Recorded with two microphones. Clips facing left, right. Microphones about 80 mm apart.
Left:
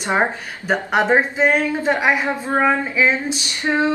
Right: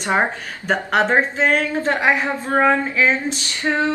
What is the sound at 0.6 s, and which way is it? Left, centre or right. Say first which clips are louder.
Speech: even; centre.